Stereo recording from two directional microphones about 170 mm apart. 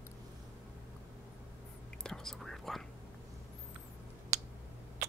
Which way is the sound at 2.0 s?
5° left (ahead or behind).